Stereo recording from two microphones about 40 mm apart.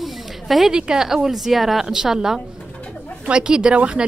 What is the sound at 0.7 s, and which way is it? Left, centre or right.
A woman's voice, centre.